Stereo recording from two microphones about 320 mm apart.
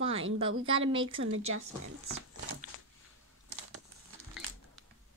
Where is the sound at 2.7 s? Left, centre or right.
Left.